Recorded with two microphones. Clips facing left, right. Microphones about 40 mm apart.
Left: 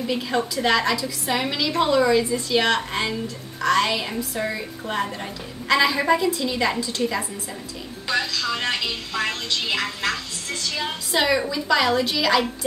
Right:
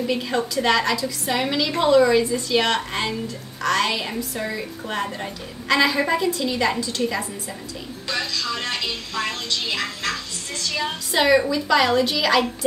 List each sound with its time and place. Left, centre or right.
0.0 s a woman's voice: centre
8.1 s a woman's voice: centre
10.8 s a woman's voice: centre